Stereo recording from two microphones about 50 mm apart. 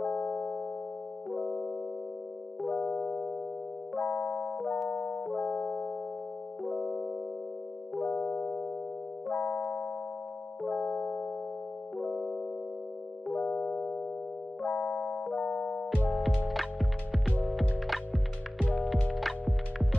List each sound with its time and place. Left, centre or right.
0.0 s music: centre
16.4 s music: centre